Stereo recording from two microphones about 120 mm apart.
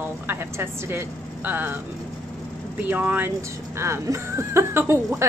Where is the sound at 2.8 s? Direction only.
15° right (ahead or behind).